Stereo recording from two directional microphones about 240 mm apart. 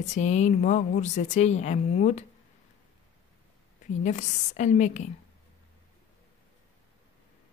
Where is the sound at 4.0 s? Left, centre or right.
Left.